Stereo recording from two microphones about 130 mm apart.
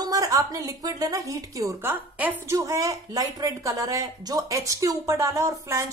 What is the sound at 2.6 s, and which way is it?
Speech, 25° right (ahead or behind).